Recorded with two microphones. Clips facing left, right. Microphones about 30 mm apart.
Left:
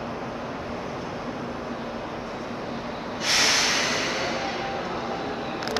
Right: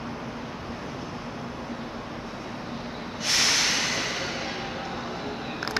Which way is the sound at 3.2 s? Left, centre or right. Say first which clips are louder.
Left 2 dB; centre.